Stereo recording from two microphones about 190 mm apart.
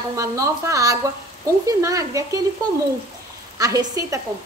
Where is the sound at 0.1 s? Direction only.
15° right (ahead or behind).